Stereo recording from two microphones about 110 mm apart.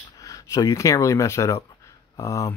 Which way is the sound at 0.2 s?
30° left (ahead or behind).